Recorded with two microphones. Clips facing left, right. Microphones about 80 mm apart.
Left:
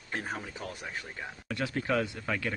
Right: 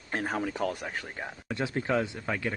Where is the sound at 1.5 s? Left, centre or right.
Right.